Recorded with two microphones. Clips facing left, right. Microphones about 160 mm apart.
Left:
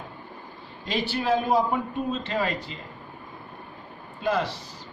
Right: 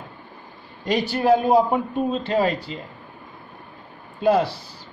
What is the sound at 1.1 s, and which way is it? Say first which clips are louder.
A man's voice: right 6 dB; 40° right (ahead or behind).